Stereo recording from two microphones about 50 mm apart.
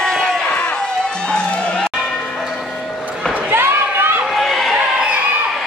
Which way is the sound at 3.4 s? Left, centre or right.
Right.